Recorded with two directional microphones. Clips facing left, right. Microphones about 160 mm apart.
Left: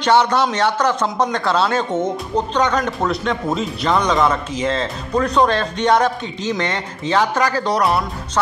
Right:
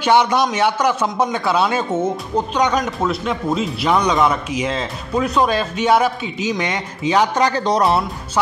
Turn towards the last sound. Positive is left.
turn(degrees=-25)  # may be behind; listen again after turning